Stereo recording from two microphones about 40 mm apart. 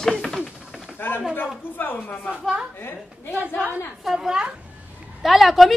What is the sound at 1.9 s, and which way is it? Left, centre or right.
Speech, left.